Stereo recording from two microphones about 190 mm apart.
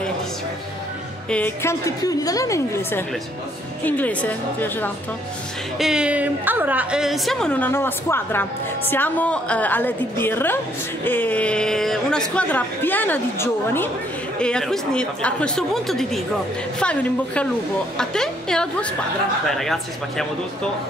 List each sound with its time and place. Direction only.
1.3 s a woman's voice: 10° left (ahead or behind)
5.8 s a woman's voice: 5° right (ahead or behind)